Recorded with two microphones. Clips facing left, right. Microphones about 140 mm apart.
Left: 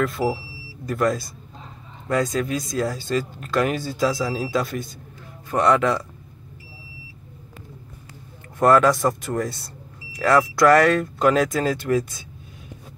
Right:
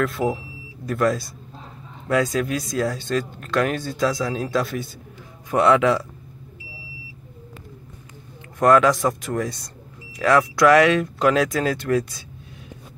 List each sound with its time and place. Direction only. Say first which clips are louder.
0.0 s speech: even; centre (ahead or behind)
8.5 s speech: even; 5° left (ahead or behind)